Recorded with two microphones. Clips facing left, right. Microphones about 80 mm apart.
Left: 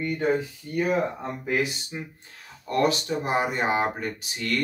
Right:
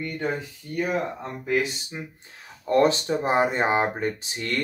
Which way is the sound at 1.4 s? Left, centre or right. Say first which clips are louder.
Right 2 dB; centre.